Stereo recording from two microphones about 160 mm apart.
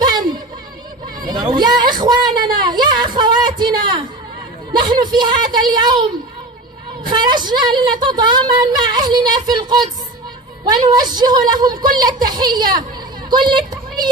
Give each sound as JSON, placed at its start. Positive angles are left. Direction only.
{"t": 0.0, "sound": "a sound", "side_deg": -25}
{"t": 4.7, "sound": "a woman's voice", "side_deg": -25}
{"t": 7.1, "sound": "a woman's voice", "side_deg": -25}
{"t": 11.0, "sound": "a woman's voice", "side_deg": -25}